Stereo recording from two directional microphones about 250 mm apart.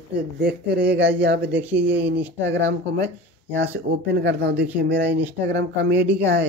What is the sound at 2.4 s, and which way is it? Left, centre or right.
Speech, right.